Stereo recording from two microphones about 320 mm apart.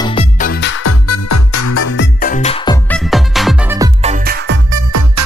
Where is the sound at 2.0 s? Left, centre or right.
Left.